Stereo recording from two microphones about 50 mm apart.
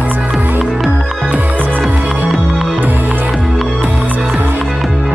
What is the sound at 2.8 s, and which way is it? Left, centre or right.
Music, right.